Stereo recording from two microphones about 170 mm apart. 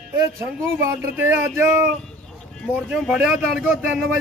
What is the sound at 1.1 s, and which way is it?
Speech, 15° right (ahead or behind).